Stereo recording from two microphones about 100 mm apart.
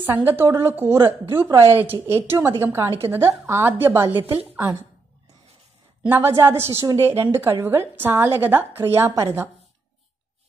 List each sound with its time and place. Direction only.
0.0 s a woman's voice: 20° right (ahead or behind)
6.0 s a woman's voice: 20° right (ahead or behind)